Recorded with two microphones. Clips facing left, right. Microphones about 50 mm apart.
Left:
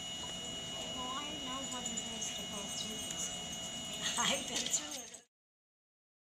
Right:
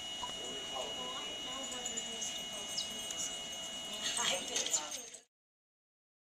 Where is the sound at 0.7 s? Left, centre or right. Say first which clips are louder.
Left 1 dB; centre.